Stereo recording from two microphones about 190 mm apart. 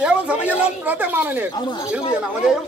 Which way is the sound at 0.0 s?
5° right (ahead or behind).